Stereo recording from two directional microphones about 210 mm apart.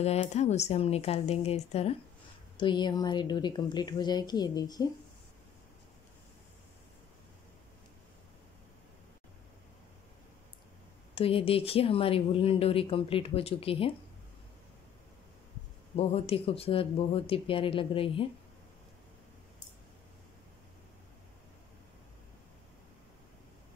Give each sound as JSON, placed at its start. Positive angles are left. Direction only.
{"t": 0.0, "sound": "speech", "side_deg": 30}
{"t": 11.1, "sound": "speech", "side_deg": 25}
{"t": 16.0, "sound": "speech", "side_deg": 25}